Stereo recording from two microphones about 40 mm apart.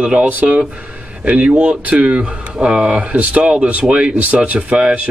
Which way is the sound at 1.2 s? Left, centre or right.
Right.